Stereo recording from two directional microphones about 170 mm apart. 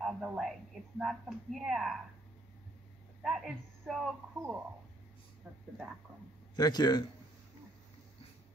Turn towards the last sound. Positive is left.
turn(degrees=25)  # may be behind; listen again after turning